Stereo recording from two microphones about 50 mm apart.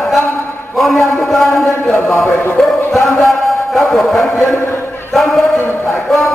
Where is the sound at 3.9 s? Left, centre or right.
Centre.